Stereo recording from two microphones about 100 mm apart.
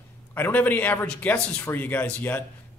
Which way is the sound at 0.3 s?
15° left (ahead or behind).